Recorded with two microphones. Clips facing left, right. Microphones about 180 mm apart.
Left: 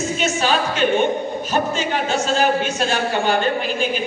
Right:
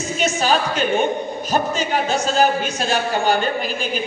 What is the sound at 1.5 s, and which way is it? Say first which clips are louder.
A woman's voice: right 1 dB; 40° right (ahead or behind).